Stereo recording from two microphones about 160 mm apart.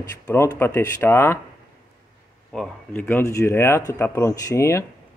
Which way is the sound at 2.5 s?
10° left (ahead or behind).